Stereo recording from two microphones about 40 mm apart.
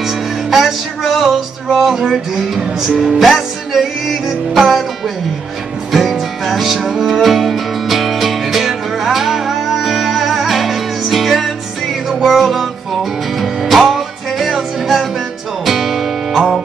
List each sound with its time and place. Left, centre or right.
0.0 s music: centre
2.0 s music: centre
5.9 s music: centre